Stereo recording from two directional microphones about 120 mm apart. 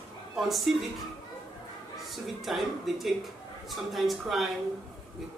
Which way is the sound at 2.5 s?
Centre (ahead or behind).